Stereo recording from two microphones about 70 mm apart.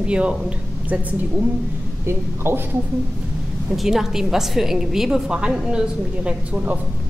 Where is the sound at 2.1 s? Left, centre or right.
Right.